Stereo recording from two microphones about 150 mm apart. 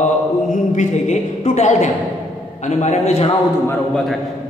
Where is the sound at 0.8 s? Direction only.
50° left (ahead or behind).